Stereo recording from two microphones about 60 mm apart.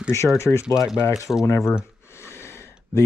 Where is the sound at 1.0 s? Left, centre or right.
Left.